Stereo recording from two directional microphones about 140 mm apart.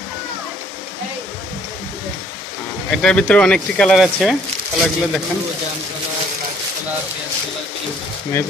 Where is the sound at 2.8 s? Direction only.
5° left (ahead or behind).